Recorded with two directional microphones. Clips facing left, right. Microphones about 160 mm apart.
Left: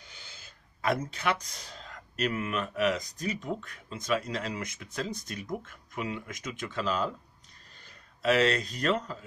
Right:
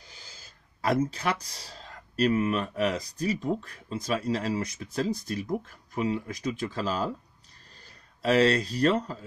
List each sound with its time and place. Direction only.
0.1 s speech: 35° right (ahead or behind)
8.2 s speech: 35° right (ahead or behind)